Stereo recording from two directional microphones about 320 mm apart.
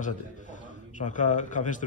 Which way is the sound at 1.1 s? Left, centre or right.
Left.